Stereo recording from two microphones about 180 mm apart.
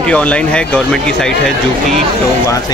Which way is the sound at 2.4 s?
20° left (ahead or behind).